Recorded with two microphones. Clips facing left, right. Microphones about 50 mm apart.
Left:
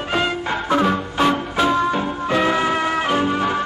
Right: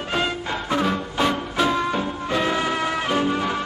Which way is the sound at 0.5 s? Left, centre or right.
Left.